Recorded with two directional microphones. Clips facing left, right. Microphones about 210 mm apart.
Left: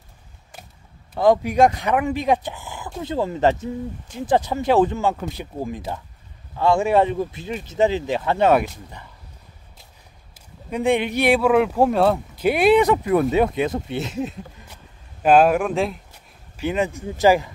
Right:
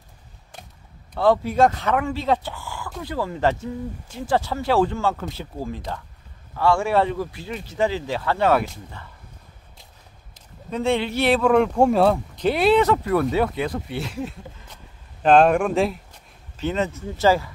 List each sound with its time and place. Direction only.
1.1 s speech: 15° left (ahead or behind)
10.3 s speech: 15° left (ahead or behind)
15.2 s speech: 5° left (ahead or behind)
16.5 s speech: 10° left (ahead or behind)